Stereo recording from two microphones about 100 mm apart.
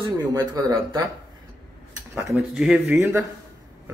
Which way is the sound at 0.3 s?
40° right (ahead or behind).